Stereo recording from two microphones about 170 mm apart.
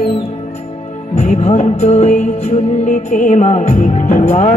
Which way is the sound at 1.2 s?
40° left (ahead or behind).